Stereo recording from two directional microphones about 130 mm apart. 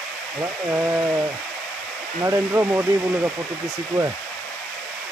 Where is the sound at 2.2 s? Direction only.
20° right (ahead or behind).